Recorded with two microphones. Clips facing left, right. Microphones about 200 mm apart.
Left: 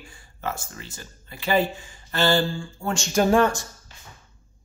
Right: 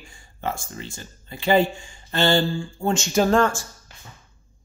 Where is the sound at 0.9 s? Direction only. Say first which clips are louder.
Right 3 dB; 25° right (ahead or behind).